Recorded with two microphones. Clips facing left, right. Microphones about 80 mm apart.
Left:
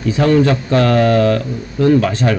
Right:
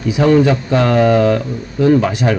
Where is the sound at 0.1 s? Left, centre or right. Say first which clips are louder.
Right 1 dB; centre.